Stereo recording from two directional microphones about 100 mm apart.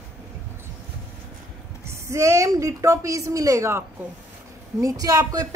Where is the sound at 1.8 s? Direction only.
30° right (ahead or behind).